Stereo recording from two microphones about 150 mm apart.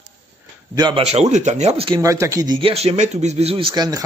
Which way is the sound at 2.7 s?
45° right (ahead or behind).